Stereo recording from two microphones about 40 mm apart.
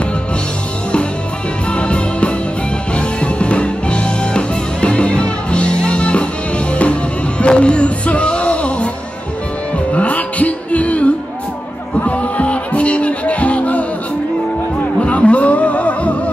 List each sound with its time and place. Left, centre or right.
1.7 s music: left
9.9 s music: left
15.0 s music: left